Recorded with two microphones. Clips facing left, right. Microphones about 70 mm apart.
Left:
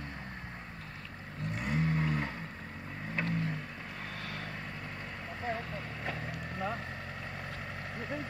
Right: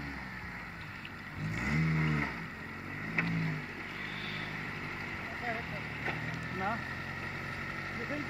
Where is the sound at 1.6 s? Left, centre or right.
Centre.